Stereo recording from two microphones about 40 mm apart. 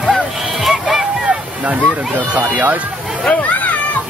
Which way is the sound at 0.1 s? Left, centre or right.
Centre.